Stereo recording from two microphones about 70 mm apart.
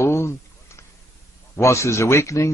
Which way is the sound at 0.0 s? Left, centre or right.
Left.